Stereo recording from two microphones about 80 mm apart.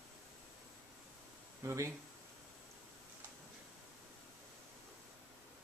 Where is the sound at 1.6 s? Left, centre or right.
Right.